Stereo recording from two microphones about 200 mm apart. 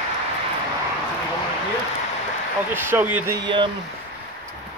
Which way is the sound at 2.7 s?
10° right (ahead or behind).